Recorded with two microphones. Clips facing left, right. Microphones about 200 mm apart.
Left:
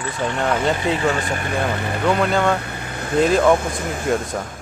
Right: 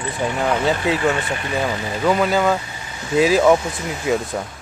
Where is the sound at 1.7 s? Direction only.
60° left (ahead or behind).